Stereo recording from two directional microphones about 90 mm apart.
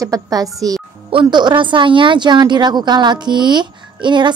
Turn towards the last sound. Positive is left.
turn(degrees=-60)  # may be behind; listen again after turning